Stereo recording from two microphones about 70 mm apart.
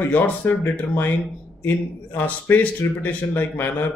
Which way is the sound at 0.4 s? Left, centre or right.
Left.